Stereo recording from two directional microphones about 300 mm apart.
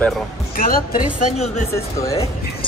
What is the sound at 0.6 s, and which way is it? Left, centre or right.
Speech, left.